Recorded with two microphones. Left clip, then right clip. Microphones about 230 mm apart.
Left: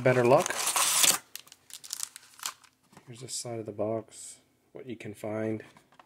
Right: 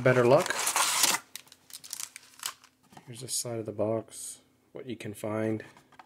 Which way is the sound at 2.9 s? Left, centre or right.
Centre.